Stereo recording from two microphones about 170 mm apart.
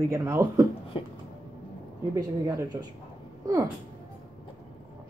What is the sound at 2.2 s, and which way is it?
Speech, 20° right (ahead or behind).